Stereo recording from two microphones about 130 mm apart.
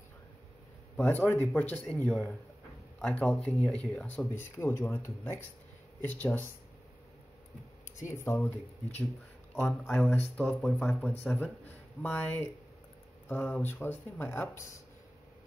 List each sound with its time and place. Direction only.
0.9 s speech: 15° left (ahead or behind)
8.1 s speech: 20° left (ahead or behind)
9.7 s speech: 5° left (ahead or behind); by 14.6 s 20° left (ahead or behind)